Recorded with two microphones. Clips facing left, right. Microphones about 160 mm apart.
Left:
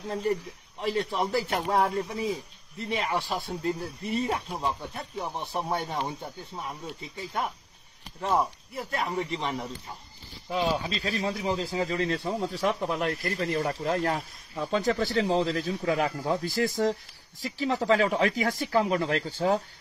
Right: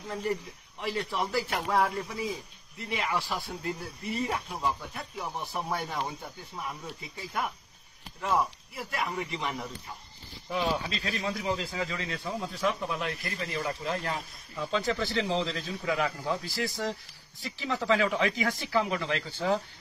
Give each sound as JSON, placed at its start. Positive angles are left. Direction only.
{"t": 0.9, "sound": "speech", "side_deg": 40}
{"t": 5.4, "sound": "speech", "side_deg": 20}
{"t": 10.5, "sound": "speech", "side_deg": 20}
{"t": 11.0, "sound": "speech", "side_deg": 35}
{"t": 14.1, "sound": "speech", "side_deg": 40}